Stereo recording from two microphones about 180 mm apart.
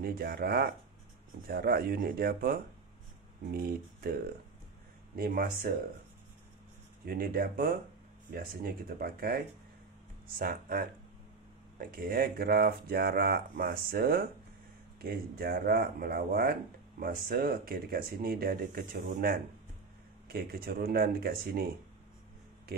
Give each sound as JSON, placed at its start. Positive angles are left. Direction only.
{"t": 0.0, "sound": "speech", "side_deg": -55}
{"t": 7.1, "sound": "speech", "side_deg": -55}